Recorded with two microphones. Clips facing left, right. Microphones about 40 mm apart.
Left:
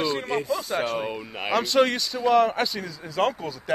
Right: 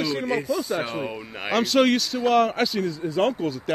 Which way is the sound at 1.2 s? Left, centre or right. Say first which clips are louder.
Right 4 dB; centre.